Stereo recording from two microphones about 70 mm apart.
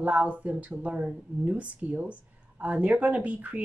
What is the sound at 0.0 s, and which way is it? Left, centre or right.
Speech, centre.